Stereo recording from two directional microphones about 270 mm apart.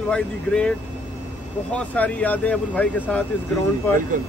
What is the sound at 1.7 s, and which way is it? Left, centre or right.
Speech, centre.